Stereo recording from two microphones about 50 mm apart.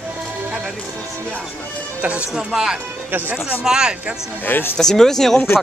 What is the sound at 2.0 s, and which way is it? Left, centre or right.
Speech, right.